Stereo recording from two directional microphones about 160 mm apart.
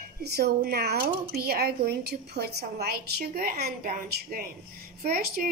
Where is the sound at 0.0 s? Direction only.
85° right.